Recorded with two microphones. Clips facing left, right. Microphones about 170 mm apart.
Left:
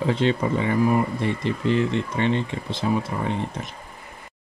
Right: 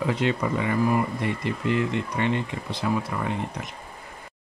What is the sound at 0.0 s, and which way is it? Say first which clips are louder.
Speech: left 3 dB; 30° left (ahead or behind).